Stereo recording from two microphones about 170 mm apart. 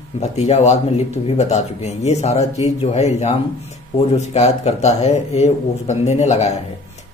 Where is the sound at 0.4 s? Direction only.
40° left (ahead or behind).